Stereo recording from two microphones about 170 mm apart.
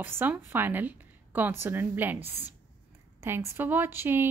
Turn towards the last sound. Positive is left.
turn(degrees=-15)  # may be behind; listen again after turning